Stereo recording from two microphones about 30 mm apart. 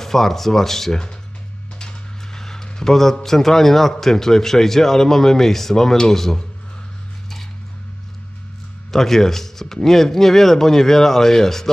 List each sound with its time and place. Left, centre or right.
0.0 s speech: centre
1.8 s a sound: left
2.4 s a man's voice: centre
8.9 s speech: centre